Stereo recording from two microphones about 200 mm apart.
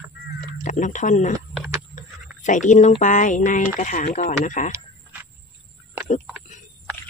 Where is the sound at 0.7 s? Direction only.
40° left (ahead or behind).